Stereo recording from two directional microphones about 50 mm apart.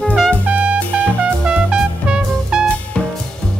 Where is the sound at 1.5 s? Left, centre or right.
Centre.